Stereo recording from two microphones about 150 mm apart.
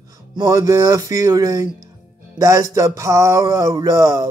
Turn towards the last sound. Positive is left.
turn(degrees=-20)  # may be behind; listen again after turning